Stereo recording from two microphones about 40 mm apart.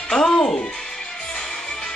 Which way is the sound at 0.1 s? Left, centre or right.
Centre.